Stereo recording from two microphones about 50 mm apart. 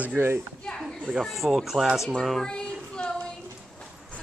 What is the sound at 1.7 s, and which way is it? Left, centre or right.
Speech, centre.